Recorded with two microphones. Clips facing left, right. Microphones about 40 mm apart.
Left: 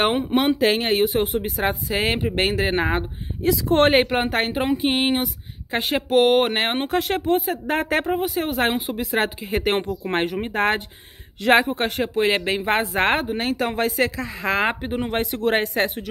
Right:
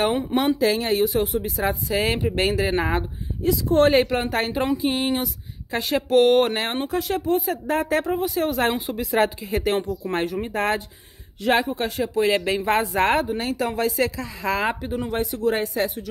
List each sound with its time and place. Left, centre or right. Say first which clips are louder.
0.3 s speech: left 1 dB; left
3.6 s speech: even; left
4.8 s speech: left 2 dB; left
6.0 s speech: right 1 dB; centre; by 6.9 s left
6.9 s speech: even; left
7.4 s speech: even; left
8.1 s speech: even; left
9.1 s speech: right 2 dB; left
9.6 s speech: left 1 dB; left
11.4 s speech: left 3 dB; left
12.2 s speech: even; left
13.4 s speech: left 1 dB; left
15.3 s speech: left 2 dB; left